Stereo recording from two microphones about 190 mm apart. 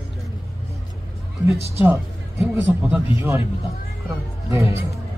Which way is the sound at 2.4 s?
5° right (ahead or behind).